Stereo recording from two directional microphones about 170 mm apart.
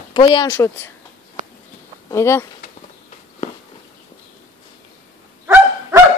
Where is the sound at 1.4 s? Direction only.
50° right (ahead or behind).